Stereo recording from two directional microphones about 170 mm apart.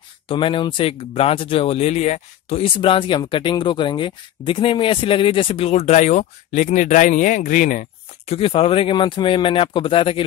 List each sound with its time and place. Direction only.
0.3 s speech: 30° left (ahead or behind); by 8.4 s 50° left (ahead or behind)
8.4 s speech: 30° left (ahead or behind)